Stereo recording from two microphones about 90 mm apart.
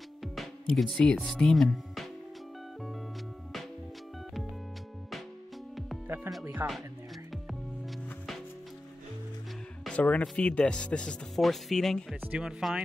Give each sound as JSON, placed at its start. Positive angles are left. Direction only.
{"t": 0.7, "sound": "speech", "side_deg": 0}
{"t": 6.0, "sound": "music", "side_deg": -25}
{"t": 6.4, "sound": "speech", "side_deg": -30}
{"t": 9.8, "sound": "speech", "side_deg": 15}
{"t": 12.2, "sound": "speech", "side_deg": -10}